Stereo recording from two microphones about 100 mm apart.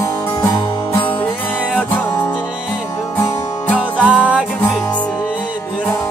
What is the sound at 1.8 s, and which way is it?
Music, 15° left (ahead or behind).